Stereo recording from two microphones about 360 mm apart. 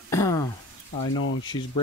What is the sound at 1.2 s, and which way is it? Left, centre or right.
Speech, left.